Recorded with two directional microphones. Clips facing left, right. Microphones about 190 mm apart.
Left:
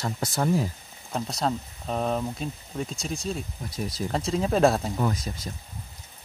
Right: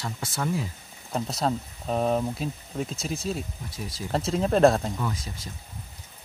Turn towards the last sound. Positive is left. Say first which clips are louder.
# left 4 dB
turn(degrees=40)  # may be behind; listen again after turning